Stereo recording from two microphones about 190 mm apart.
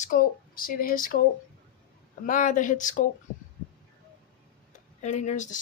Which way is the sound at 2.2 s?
40° left (ahead or behind).